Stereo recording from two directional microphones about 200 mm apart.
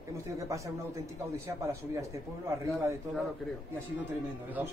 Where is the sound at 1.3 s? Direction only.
15° right (ahead or behind).